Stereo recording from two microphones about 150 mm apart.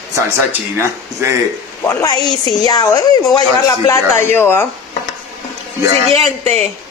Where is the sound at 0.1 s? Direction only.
15° right (ahead or behind).